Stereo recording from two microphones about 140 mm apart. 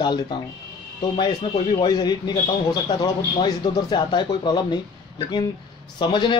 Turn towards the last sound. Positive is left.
turn(degrees=35)  # may be behind; listen again after turning